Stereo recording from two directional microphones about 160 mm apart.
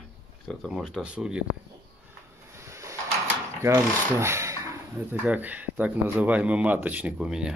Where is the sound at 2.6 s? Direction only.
20° right (ahead or behind).